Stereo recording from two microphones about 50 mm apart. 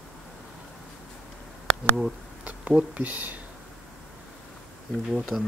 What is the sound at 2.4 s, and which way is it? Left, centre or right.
Speech, right.